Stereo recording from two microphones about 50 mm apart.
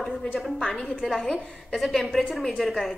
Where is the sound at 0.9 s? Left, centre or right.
Centre.